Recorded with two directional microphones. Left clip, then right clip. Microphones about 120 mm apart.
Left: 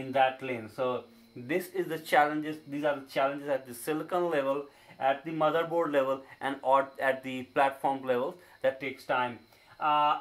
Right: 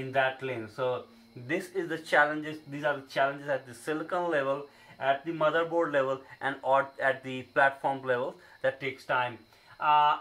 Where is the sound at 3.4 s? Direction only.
30° left (ahead or behind).